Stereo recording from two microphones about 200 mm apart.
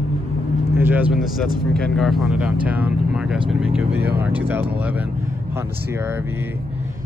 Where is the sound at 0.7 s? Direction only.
10° right (ahead or behind).